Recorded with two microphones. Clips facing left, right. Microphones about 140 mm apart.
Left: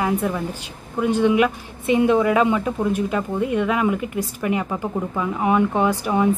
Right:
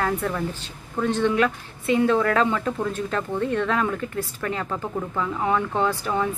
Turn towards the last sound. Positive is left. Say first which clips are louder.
# left 4 dB
turn(degrees=15)  # may be behind; listen again after turning